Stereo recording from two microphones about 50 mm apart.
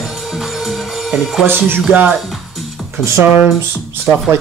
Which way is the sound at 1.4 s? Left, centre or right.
Right.